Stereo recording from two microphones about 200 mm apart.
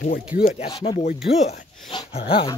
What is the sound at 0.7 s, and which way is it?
Speech, 25° left (ahead or behind).